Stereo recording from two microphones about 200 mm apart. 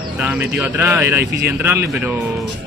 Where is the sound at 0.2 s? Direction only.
10° right (ahead or behind).